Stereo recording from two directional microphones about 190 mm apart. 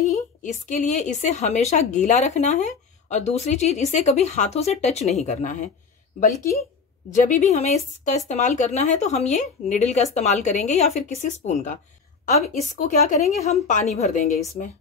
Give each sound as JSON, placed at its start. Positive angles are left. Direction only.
{"t": 0.0, "sound": "a woman's voice", "side_deg": 40}
{"t": 7.1, "sound": "a woman's voice", "side_deg": 40}